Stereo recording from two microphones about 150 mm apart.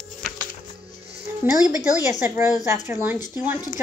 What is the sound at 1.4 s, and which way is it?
A woman's voice, 10° right (ahead or behind).